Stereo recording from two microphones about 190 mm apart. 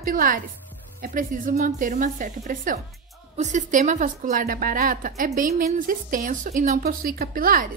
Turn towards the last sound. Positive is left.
turn(degrees=-50)  # may be behind; listen again after turning